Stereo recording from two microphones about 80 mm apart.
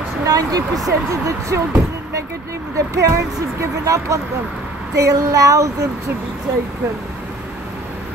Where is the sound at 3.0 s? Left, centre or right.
Right.